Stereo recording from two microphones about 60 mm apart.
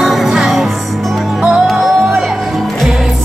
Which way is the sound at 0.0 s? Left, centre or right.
Centre.